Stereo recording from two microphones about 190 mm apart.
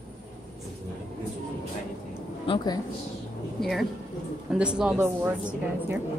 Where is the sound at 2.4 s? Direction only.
25° left (ahead or behind).